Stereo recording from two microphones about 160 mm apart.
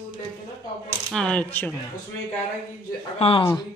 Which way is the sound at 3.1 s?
35° left (ahead or behind).